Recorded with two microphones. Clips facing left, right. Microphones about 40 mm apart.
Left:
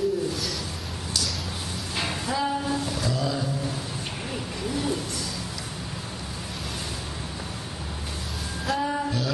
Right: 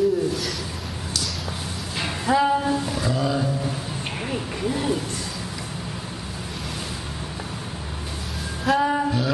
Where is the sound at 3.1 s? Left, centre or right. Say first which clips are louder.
Right 6 dB; right.